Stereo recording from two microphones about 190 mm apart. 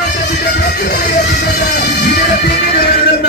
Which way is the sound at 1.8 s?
60° left (ahead or behind).